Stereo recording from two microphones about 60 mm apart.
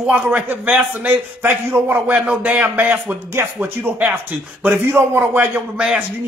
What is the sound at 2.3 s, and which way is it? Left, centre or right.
A man's voice, right.